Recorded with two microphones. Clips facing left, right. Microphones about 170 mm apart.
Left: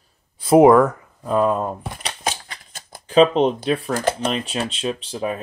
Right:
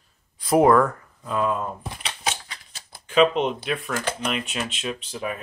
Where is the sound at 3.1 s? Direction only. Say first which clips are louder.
Left 5 dB; 35° left (ahead or behind).